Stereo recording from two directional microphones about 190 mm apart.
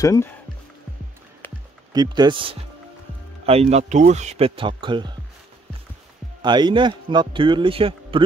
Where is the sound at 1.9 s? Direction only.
20° right (ahead or behind).